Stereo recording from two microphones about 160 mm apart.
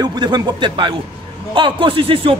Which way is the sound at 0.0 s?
25° right (ahead or behind).